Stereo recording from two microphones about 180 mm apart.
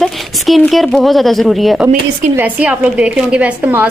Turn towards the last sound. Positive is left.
turn(degrees=-10)  # may be behind; listen again after turning